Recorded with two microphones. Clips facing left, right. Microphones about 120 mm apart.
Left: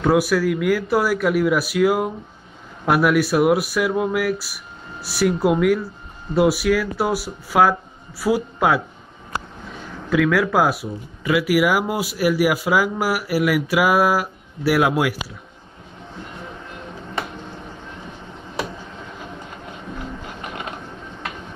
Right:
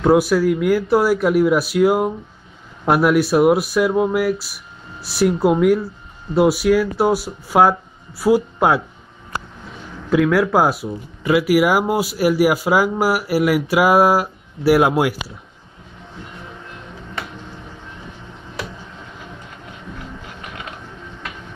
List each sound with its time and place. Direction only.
0.0 s speech: 20° right (ahead or behind)
10.0 s a man's voice: 25° right (ahead or behind)
20.4 s mechanisms: 35° left (ahead or behind)